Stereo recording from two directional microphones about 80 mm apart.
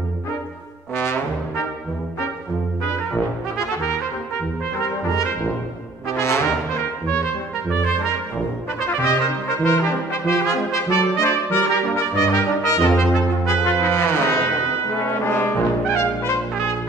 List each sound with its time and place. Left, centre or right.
0.9 s brass instrument: left
6.1 s brass instrument: left
9.7 s trumpet: left
15.0 s brass instrument: left